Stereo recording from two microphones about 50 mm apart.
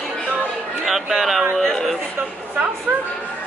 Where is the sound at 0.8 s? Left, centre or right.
Centre.